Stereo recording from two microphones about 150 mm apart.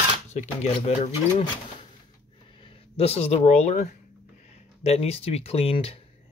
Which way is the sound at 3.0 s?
40° left (ahead or behind).